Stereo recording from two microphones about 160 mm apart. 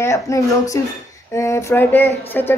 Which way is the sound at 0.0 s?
20° left (ahead or behind).